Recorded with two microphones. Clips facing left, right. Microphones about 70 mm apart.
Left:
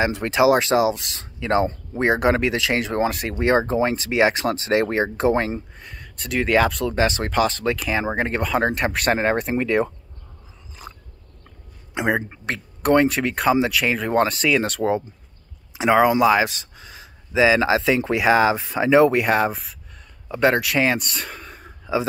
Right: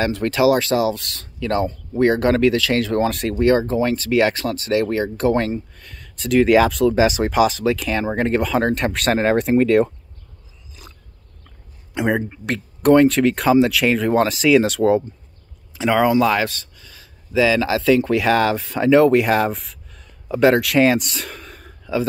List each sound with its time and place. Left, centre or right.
0.0 s speech: centre
3.1 s speech: centre
3.3 s speech: left
4.5 s speech: left
5.8 s speech: centre
11.9 s a man's voice: centre
15.7 s speech: centre
21.6 s a sound: centre